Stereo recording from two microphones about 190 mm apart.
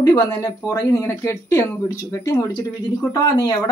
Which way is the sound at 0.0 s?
20° left (ahead or behind).